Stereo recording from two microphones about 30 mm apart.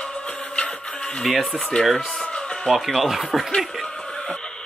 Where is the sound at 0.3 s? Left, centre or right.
Left.